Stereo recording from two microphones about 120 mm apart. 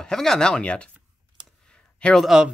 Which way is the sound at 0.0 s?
5° left (ahead or behind).